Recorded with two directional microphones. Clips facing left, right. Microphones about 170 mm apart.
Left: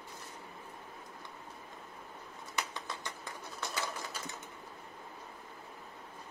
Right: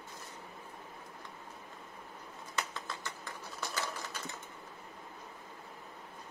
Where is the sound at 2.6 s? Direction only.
20° left (ahead or behind).